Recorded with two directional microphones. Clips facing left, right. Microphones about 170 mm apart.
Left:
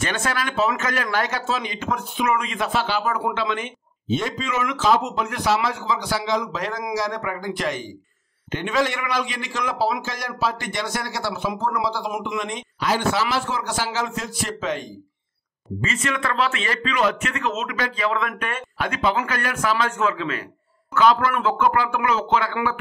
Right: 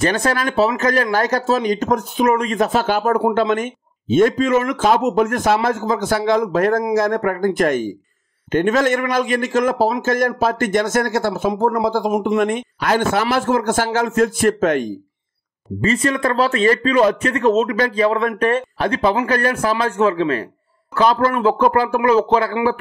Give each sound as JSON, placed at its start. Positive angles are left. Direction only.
{"t": 0.0, "sound": "a man's voice", "side_deg": -35}
{"t": 12.4, "sound": "speech", "side_deg": -55}
{"t": 15.8, "sound": "a man's voice", "side_deg": -35}